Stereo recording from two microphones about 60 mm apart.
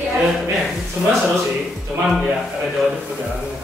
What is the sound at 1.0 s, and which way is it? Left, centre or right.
Speech, centre.